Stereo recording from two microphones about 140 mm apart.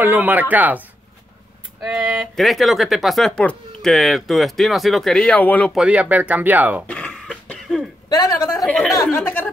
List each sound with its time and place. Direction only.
0.0 s speech: 15° right (ahead or behind); by 5.7 s 10° left (ahead or behind)
5.8 s speech: 10° right (ahead or behind)
6.9 s cough: 10° left (ahead or behind)
8.1 s a woman's voice: 30° left (ahead or behind)
8.5 s speech: centre (ahead or behind)